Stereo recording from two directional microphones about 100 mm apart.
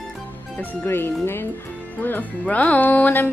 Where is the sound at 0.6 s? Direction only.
20° left (ahead or behind).